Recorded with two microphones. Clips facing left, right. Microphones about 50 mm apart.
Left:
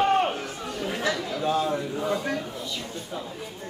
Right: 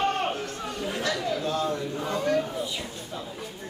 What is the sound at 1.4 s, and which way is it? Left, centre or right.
Speech, centre.